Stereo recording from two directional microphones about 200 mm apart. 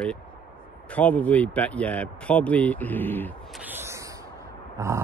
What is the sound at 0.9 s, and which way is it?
Speech, 5° left (ahead or behind).